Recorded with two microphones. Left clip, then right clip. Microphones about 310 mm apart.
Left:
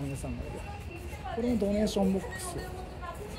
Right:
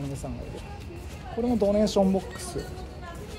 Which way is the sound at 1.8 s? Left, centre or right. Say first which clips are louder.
Right 6 dB; centre.